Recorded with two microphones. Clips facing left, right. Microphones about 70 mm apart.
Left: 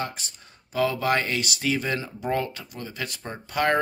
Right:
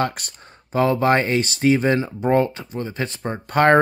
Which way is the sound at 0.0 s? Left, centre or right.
Right.